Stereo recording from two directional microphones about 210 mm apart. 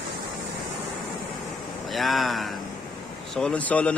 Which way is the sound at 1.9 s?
Centre (ahead or behind).